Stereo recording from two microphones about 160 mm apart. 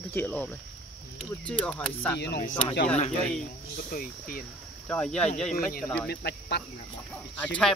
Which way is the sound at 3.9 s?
60° left (ahead or behind).